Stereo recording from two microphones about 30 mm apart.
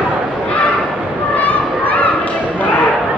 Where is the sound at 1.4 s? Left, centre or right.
Left.